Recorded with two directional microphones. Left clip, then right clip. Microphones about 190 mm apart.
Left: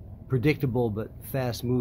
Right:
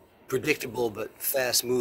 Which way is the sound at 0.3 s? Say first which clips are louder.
Left 1 dB; 15° right (ahead or behind).